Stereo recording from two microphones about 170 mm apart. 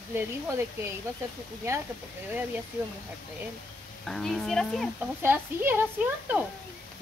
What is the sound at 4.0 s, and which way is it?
Speech, centre (ahead or behind).